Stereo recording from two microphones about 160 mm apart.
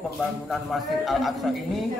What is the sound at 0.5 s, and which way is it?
A man's voice, centre (ahead or behind).